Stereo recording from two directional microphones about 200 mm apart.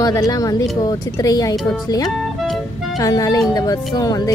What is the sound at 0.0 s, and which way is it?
Speech, 20° left (ahead or behind).